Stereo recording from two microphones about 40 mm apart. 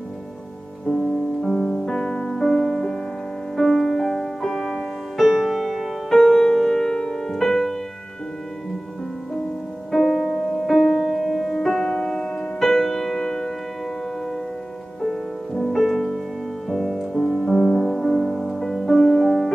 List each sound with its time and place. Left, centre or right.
0.8 s music: centre
9.8 s music: centre
11.8 s music: centre
15.7 s music: centre
18.1 s music: centre